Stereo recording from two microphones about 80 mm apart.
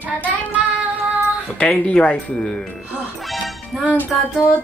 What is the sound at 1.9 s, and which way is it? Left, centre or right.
Speech, centre.